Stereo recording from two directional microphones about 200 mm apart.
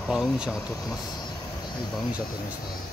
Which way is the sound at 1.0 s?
20° left (ahead or behind).